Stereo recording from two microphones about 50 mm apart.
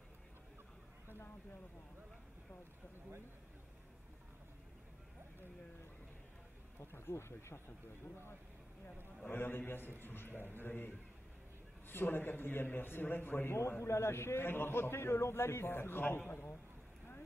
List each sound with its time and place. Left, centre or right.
6.8 s speech: left
9.3 s a man's voice: left